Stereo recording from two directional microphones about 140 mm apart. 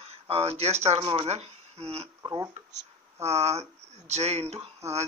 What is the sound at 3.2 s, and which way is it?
Speech, 50° right (ahead or behind).